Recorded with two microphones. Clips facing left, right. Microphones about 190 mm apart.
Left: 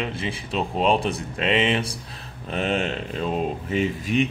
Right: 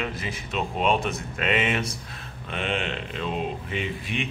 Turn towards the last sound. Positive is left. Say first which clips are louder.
# left 8 dB
turn(degrees=40)  # may be behind; listen again after turning